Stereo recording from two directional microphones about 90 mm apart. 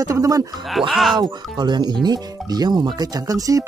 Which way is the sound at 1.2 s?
55° right (ahead or behind).